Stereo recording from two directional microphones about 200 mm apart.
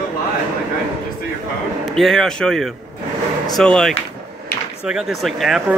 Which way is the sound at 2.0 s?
Centre (ahead or behind).